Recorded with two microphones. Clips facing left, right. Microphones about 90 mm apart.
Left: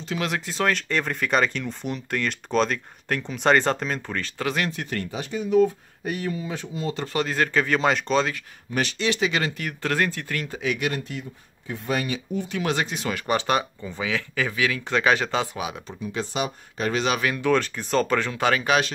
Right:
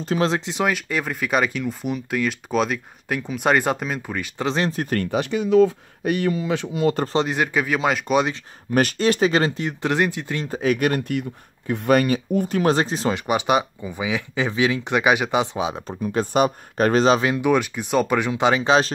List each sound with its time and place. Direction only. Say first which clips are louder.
0.0 s speech: right 7 dB; 40° right (ahead or behind)
0.3 s speech: right 2 dB; 15° right (ahead or behind)
4.4 s speech: right 4 dB; 25° right (ahead or behind)
4.6 s speech: right 6 dB; 40° right (ahead or behind)
5.1 s speech: right 4 dB; 70° right (ahead or behind)
7.1 s speech: right 3 dB; 20° right (ahead or behind); by 8.2 s 5° right (ahead or behind)
8.7 s speech: right 6 dB; 45° right (ahead or behind); by 10.4 s 20° right (ahead or behind)
10.4 s speech: right 7 dB; 40° right (ahead or behind)
13.1 s speech: right 2 dB; 15° right (ahead or behind)
16.0 s speech: right 8 dB; 50° right (ahead or behind)
17.0 s speech: right 6 dB; 30° right (ahead or behind)